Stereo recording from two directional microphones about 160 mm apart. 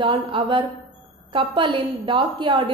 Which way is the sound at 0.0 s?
30° right (ahead or behind).